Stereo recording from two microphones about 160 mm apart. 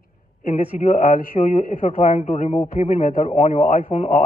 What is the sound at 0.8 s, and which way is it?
A man's voice, 55° left (ahead or behind).